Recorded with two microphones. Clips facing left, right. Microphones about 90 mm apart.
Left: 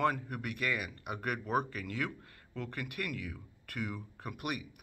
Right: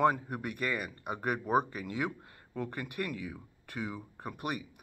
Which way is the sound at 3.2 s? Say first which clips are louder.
Right 2 dB; 15° right (ahead or behind).